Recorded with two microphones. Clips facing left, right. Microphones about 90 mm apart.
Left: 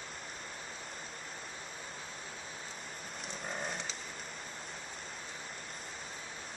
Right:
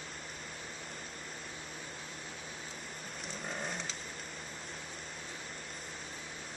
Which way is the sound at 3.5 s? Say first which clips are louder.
Left 1 dB; centre (ahead or behind).